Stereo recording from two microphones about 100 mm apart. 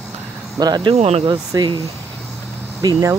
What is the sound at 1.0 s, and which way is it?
Speech, 90° right.